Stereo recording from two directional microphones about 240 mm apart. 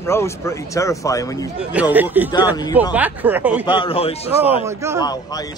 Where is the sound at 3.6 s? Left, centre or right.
Left.